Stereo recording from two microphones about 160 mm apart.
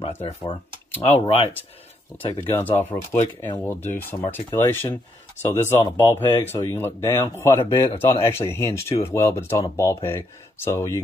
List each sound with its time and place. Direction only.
1.0 s speech: 35° left (ahead or behind)
2.5 s speech: 15° left (ahead or behind)